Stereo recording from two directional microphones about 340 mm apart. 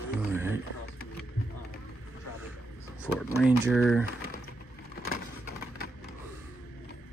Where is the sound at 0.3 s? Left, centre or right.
Centre.